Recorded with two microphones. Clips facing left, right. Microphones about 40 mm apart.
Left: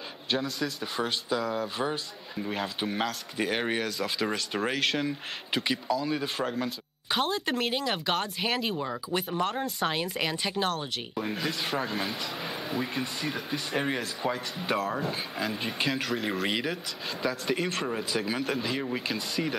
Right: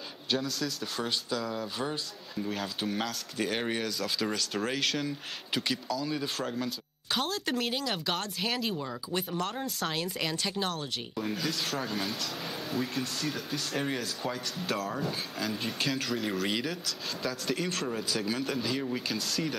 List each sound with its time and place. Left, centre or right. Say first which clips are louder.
0.3 s speech: left 2 dB; centre
14.9 s speech: left 3 dB; centre
15.3 s speech: left 2 dB; centre